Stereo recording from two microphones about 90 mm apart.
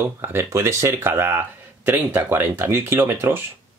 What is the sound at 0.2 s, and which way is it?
Speech, 30° right (ahead or behind).